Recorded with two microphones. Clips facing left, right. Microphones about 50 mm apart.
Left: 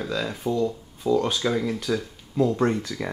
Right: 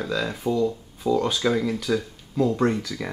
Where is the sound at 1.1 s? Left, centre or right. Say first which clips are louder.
Even; centre.